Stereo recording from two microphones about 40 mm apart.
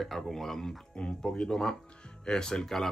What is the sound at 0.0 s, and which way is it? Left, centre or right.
Speech, centre.